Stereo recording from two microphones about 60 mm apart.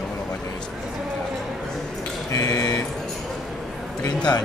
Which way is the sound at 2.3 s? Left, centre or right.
Left.